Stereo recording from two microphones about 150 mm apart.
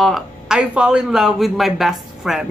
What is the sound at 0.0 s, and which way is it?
Speech, centre (ahead or behind).